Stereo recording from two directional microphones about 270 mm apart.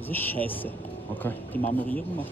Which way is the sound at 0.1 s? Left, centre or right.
Centre.